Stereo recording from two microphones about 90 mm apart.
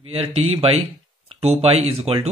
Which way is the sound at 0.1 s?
90° right.